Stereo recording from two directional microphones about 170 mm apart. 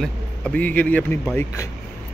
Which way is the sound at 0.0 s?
10° left (ahead or behind).